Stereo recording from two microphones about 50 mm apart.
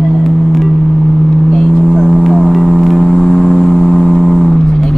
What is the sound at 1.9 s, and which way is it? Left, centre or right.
Vehicle, centre.